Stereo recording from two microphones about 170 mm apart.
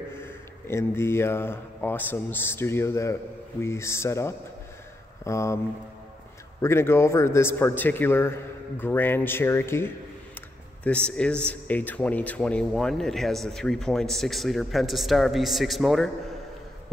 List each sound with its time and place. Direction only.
0.1 s a man's voice: 15° left (ahead or behind)
6.6 s a man's voice: 15° left (ahead or behind)